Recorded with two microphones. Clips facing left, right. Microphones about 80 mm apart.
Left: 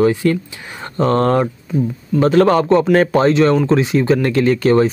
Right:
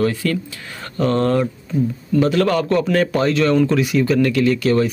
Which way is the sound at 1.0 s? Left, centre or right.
Left.